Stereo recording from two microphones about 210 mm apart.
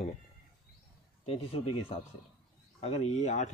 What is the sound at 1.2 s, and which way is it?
Speech, 25° left (ahead or behind).